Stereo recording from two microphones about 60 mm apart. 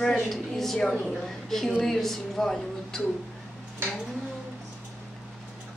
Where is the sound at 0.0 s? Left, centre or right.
Centre.